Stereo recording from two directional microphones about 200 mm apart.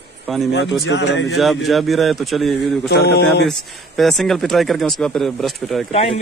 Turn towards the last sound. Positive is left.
turn(degrees=30)  # may be behind; listen again after turning